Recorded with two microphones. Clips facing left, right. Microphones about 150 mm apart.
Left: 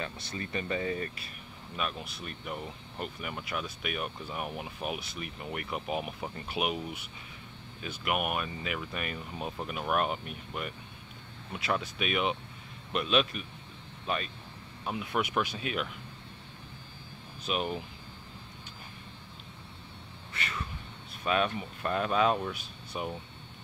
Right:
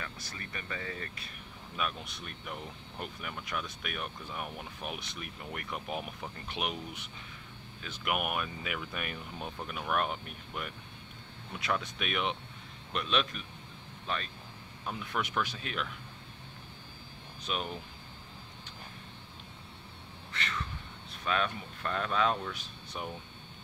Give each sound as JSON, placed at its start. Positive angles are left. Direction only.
{"t": 0.0, "sound": "speech", "side_deg": 25}
{"t": 1.8, "sound": "speech", "side_deg": 5}
{"t": 17.5, "sound": "speech", "side_deg": 5}
{"t": 20.3, "sound": "a sound", "side_deg": 10}
{"t": 21.2, "sound": "speech", "side_deg": 10}